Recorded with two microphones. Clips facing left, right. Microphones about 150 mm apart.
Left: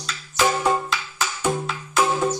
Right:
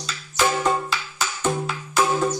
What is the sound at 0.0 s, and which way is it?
Music, centre (ahead or behind).